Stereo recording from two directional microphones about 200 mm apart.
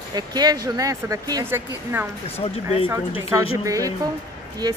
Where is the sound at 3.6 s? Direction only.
15° right (ahead or behind).